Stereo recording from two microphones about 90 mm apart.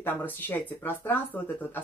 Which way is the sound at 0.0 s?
20° left (ahead or behind).